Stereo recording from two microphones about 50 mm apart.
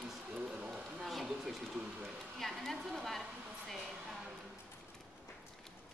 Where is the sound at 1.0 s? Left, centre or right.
Centre.